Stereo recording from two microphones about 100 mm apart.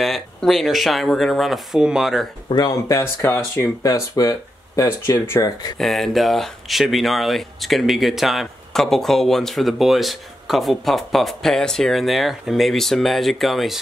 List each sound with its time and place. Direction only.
0.0 s speech: centre (ahead or behind)
2.5 s speech: 40° left (ahead or behind)
3.0 s speech: 25° left (ahead or behind)
5.8 s speech: centre (ahead or behind)